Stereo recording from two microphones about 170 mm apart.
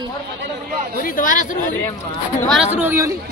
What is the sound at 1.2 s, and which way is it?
Speech, 50° left (ahead or behind).